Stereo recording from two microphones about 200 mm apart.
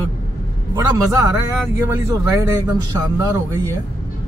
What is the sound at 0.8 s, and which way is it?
A man's voice, 15° right (ahead or behind).